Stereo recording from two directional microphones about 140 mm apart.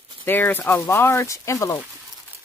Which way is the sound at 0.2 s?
15° left (ahead or behind).